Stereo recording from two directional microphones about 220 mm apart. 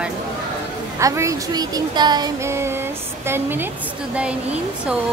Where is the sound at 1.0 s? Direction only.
15° right (ahead or behind).